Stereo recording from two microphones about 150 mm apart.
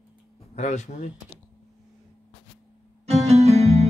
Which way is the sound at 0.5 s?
50° left (ahead or behind).